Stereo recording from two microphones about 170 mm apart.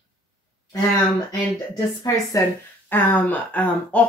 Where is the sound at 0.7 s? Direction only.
20° left (ahead or behind).